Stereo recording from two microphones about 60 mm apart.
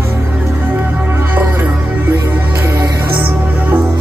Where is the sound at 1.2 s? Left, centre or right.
Right.